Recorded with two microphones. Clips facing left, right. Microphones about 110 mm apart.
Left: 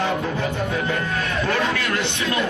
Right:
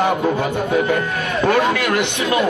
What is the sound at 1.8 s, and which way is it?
Speech, 65° right (ahead or behind).